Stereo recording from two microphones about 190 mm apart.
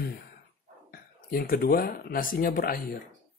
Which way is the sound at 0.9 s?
55° left (ahead or behind).